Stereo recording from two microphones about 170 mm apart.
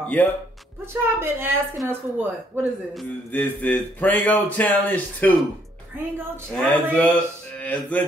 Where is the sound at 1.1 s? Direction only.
15° right (ahead or behind).